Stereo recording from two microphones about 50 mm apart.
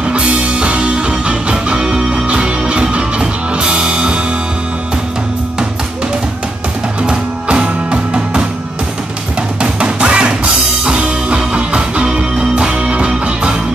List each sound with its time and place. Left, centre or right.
0.1 s music: right
7.0 s music: right
9.6 s music: right